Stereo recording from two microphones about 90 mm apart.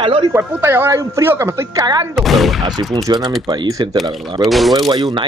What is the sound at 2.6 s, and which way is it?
Speech, 45° right (ahead or behind).